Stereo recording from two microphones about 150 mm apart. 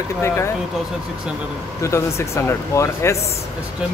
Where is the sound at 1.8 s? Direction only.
20° left (ahead or behind).